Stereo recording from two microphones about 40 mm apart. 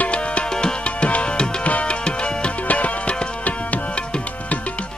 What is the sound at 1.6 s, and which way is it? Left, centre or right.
Tabla, left.